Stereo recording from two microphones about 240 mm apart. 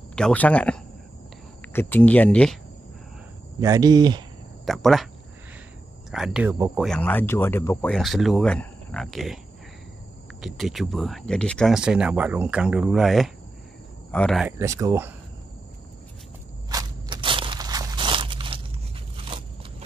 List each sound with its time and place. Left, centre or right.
0.1 s speech: centre
3.6 s speech: centre
4.6 s speech: centre
6.1 s speech: centre
10.4 s speech: centre
14.6 s speech: centre
16.7 s crunch: centre